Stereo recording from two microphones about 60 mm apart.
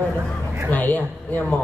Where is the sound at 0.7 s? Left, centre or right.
Left.